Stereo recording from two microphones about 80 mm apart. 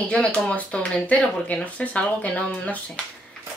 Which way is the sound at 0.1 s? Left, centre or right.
Centre.